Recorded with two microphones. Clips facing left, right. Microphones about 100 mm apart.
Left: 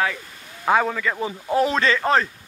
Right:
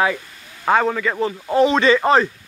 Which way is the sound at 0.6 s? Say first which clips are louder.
Right 2 dB; centre (ahead or behind).